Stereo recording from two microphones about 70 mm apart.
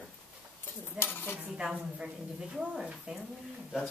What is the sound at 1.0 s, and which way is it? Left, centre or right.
Speech, left.